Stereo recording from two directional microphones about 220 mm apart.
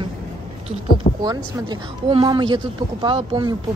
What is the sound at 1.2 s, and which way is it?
Speech, 20° right (ahead or behind).